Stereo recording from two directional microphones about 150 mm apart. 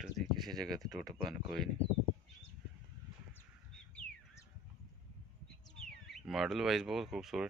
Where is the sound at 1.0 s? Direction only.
25° right (ahead or behind).